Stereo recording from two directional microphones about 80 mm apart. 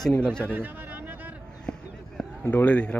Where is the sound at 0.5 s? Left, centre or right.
Right.